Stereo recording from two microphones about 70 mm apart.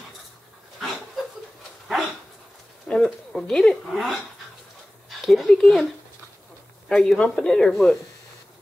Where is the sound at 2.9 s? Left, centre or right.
Centre.